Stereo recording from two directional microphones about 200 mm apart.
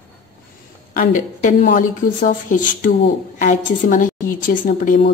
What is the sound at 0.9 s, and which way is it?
Speech, 45° left (ahead or behind).